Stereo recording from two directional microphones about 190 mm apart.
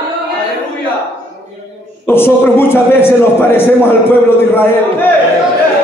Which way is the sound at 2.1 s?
10° left (ahead or behind).